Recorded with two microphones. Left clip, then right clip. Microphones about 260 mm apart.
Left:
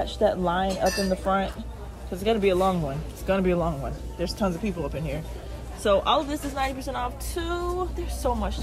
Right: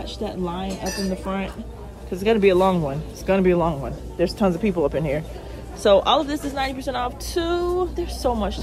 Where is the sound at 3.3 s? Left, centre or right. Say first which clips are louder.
Right 5 dB; centre.